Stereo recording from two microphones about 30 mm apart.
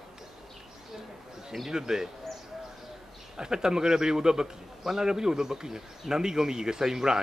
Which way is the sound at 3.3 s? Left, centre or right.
Right.